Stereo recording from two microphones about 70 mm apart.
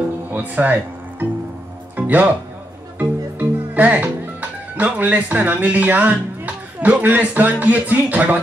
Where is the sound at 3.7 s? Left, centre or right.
Right.